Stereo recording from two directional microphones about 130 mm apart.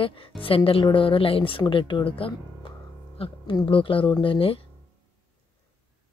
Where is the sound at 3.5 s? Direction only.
40° left (ahead or behind).